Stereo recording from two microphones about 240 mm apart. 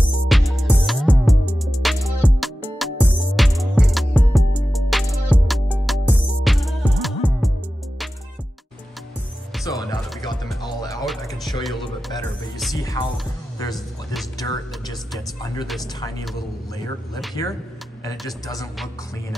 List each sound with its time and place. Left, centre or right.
0.3 s music: centre
9.7 s music: centre
13.0 s music: centre
14.4 s music: centre